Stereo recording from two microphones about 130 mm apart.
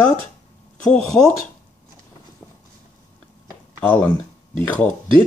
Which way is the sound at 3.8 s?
15° left (ahead or behind).